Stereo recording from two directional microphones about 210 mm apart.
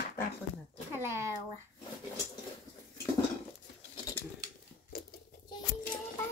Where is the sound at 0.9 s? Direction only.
10° right (ahead or behind).